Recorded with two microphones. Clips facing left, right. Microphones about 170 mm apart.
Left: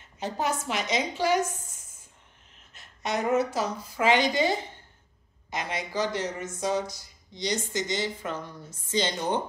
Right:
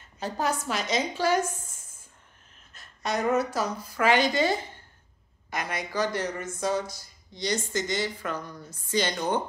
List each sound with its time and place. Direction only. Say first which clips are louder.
0.2 s speech: even; 20° left (ahead or behind)
2.7 s speech: even; 20° left (ahead or behind)